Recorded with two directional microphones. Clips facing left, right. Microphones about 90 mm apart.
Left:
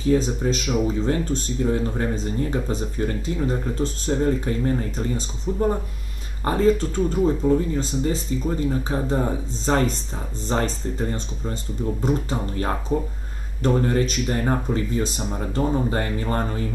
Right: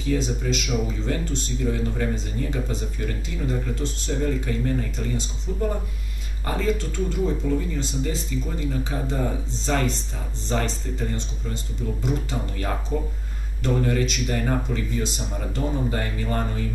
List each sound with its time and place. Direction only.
0.1 s speech: 40° left (ahead or behind)